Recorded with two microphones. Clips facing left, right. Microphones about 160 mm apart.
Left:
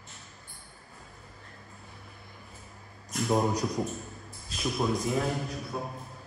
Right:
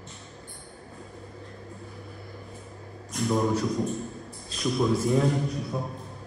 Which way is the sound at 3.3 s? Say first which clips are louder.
Right 1 dB; 40° left (ahead or behind).